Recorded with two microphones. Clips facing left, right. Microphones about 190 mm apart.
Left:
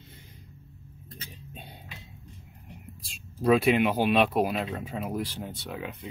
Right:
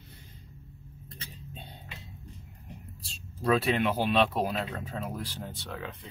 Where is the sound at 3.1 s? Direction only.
10° left (ahead or behind).